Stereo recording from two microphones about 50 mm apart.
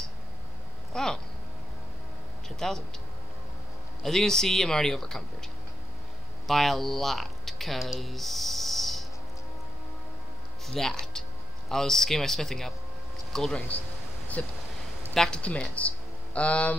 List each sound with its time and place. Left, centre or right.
0.9 s speech: centre
2.6 s speech: centre
4.0 s speech: centre
6.4 s speech: centre
10.7 s speech: centre
14.4 s speech: left
15.1 s speech: centre
15.4 s speech: left